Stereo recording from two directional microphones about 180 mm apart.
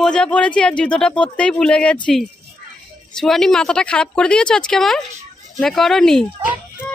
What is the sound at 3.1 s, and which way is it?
Speech, 5° left (ahead or behind).